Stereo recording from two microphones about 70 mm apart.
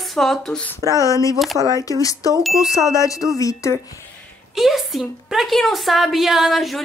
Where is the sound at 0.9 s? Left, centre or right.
Left.